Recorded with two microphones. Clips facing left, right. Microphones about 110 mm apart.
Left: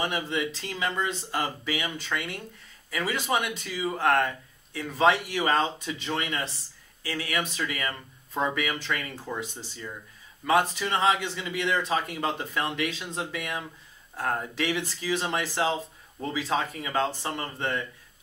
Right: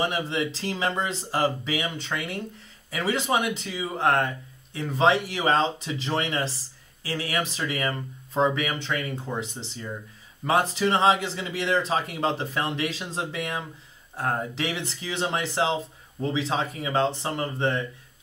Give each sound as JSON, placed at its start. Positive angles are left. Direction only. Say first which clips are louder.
{"t": 0.1, "sound": "speech", "louder": "right 2 dB", "side_deg": -30}